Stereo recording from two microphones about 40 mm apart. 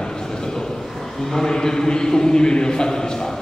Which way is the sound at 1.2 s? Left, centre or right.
Centre.